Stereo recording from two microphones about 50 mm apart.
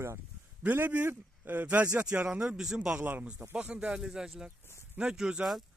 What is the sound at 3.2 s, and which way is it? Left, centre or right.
Speech, right.